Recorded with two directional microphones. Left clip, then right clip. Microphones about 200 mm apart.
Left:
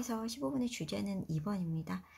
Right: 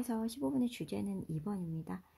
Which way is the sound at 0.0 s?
35° right (ahead or behind).